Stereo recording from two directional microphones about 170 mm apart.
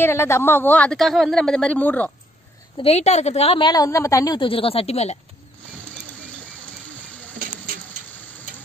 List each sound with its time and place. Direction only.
0.0 s speech: 15° left (ahead or behind)
2.8 s a woman's voice: 40° left (ahead or behind)
7.3 s a sound: 55° right (ahead or behind)